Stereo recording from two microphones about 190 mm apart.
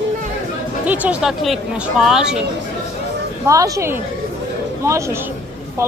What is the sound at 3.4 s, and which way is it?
Speech, 15° right (ahead or behind).